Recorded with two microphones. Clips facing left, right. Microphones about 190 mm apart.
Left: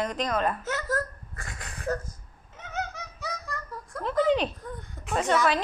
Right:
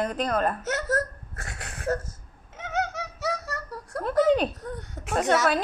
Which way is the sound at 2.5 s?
90° right.